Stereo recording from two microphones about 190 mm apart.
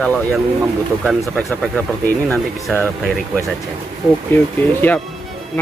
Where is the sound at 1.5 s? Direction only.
Centre (ahead or behind).